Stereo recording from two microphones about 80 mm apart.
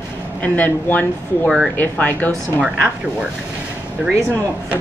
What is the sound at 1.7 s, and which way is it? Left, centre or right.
Speech, left.